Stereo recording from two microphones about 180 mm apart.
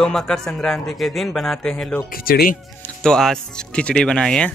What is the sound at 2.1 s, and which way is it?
Speech, 55° left (ahead or behind).